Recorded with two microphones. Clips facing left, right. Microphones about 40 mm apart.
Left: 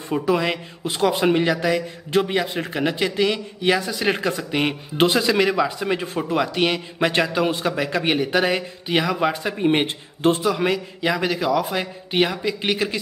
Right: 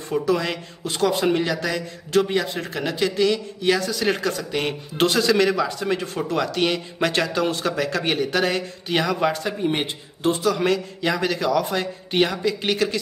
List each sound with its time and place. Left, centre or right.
0.1 s speech: centre
9.6 s a man's voice: left
10.4 s speech: centre